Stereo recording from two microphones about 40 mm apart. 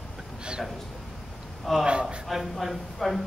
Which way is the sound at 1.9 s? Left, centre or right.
Right.